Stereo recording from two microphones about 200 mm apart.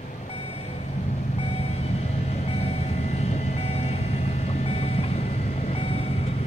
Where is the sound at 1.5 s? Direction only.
30° left (ahead or behind).